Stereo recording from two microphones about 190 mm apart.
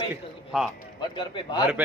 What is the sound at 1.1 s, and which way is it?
Speech, 25° left (ahead or behind).